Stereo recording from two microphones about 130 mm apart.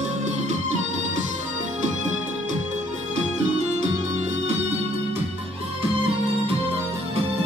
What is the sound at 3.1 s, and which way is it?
Music, 60° right (ahead or behind).